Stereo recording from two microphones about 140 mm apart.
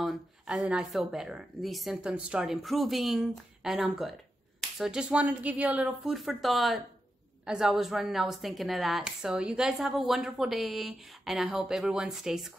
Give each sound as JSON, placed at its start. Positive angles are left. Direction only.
{"t": 0.0, "sound": "a woman's voice", "side_deg": -5}